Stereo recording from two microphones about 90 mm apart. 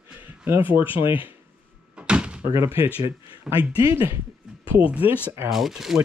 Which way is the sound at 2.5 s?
30° right (ahead or behind).